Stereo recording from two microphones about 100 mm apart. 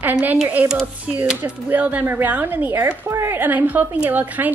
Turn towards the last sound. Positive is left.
turn(degrees=-15)  # may be behind; listen again after turning